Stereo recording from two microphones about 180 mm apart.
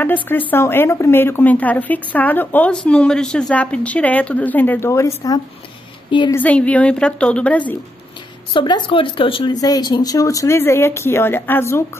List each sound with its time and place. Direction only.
0.0 s a woman's voice: 10° left (ahead or behind); by 6.3 s 25° left (ahead or behind)
6.3 s a woman's voice: 10° left (ahead or behind)
8.5 s speech: 25° left (ahead or behind)